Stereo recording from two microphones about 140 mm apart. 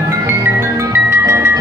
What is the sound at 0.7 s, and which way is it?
Music, 20° right (ahead or behind).